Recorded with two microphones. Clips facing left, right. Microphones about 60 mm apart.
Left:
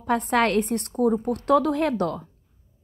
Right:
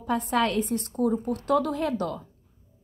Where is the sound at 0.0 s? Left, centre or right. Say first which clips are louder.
Left 3 dB; left.